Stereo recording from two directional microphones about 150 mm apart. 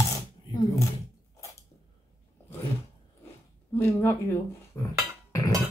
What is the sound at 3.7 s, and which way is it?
Music, 15° left (ahead or behind).